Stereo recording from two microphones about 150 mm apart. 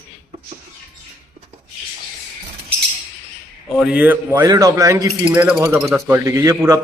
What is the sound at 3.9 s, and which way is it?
A man's voice, 10° right (ahead or behind).